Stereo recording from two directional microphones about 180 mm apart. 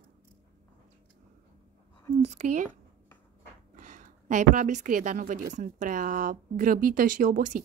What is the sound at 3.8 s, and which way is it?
A woman's voice, 45° right (ahead or behind).